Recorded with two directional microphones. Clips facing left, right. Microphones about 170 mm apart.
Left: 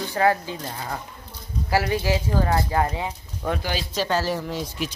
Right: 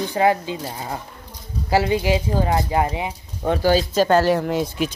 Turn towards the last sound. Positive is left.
turn(degrees=-60)  # may be behind; listen again after turning